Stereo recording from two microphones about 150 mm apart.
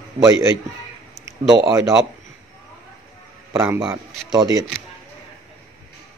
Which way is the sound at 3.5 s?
20° right (ahead or behind).